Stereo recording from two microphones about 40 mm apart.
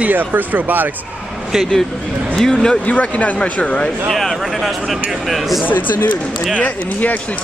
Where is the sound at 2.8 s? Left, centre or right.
Left.